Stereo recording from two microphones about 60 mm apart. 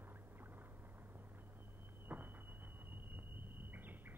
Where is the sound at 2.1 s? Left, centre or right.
Right.